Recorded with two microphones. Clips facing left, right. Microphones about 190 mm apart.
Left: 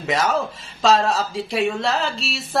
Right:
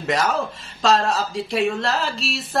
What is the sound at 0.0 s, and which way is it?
Speech, centre (ahead or behind).